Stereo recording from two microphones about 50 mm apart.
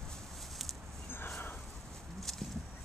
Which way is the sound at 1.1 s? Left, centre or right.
Left.